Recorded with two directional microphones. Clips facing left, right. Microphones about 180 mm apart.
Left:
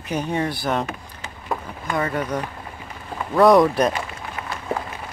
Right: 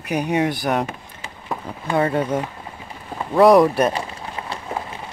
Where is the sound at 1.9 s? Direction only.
30° right (ahead or behind).